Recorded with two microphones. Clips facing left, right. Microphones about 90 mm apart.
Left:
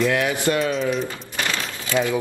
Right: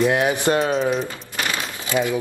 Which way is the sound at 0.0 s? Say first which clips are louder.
Right 2 dB; 25° right (ahead or behind).